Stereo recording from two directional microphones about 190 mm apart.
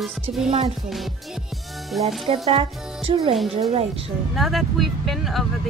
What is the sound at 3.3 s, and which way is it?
Speech, centre (ahead or behind).